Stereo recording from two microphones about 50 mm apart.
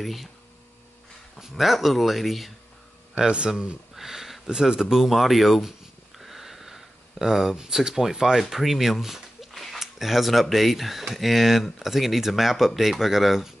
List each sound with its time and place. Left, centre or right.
0.0 s speech: centre
1.5 s speech: centre
3.3 s a man's voice: centre
3.9 s a sound: centre
4.5 s speech: centre